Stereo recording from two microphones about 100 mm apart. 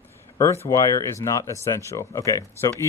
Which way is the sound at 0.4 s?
30° left (ahead or behind).